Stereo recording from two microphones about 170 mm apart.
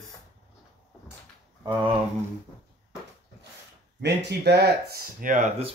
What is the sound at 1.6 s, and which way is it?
Speech, 25° right (ahead or behind).